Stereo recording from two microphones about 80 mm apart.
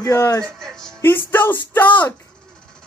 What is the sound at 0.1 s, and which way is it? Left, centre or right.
Speech, left.